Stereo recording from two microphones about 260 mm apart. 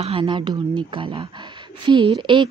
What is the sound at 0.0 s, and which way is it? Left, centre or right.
Speech, centre.